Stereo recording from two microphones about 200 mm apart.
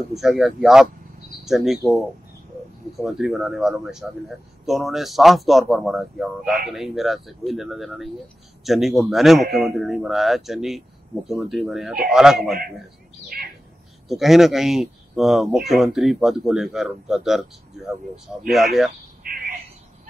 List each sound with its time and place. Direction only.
0.1 s speech: centre (ahead or behind)
3.0 s speech: centre (ahead or behind)
13.3 s bird: 45° right (ahead or behind)
14.0 s speech: centre (ahead or behind)
19.2 s a sound: 45° right (ahead or behind)